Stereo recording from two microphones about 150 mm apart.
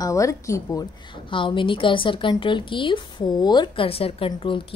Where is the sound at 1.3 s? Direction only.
35° left (ahead or behind).